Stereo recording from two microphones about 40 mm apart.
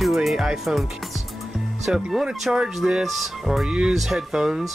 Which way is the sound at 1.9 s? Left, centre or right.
Right.